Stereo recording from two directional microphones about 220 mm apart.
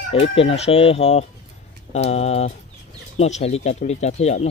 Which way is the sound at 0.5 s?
25° left (ahead or behind).